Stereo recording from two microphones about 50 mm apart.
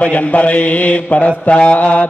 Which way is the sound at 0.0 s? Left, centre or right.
Left.